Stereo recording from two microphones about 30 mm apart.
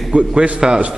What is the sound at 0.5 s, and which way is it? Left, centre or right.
Speech, right.